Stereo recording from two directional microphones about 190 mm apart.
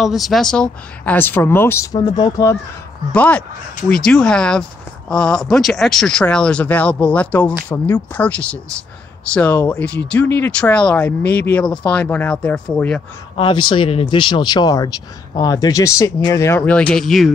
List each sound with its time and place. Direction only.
0.0 s speech: centre (ahead or behind); by 2.5 s 20° left (ahead or behind)
3.1 s speech: 5° left (ahead or behind)
13.4 s speech: 25° left (ahead or behind); by 17.3 s centre (ahead or behind)